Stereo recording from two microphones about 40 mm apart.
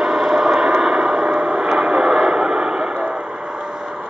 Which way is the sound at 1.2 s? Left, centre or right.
Right.